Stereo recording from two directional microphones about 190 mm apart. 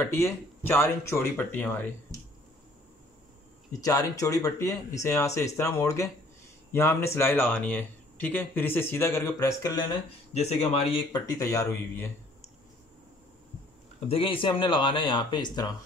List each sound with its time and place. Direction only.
0.0 s speech: 15° left (ahead or behind)
2.1 s a sound: 15° right (ahead or behind)
3.8 s speech: 20° left (ahead or behind)
10.3 s speech: 35° left (ahead or behind); by 12.1 s 15° left (ahead or behind)
14.0 s speech: 30° left (ahead or behind)